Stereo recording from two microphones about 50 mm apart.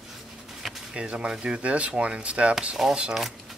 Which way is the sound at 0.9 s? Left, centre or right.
Right.